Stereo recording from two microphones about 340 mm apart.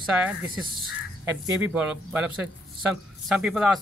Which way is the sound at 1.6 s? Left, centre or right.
Centre.